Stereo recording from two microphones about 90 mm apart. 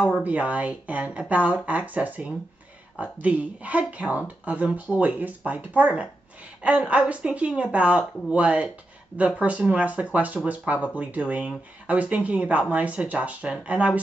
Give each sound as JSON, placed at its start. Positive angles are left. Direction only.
{"t": 0.2, "sound": "speech", "side_deg": -15}